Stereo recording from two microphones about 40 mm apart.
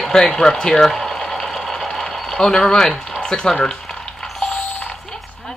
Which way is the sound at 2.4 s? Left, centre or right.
Centre.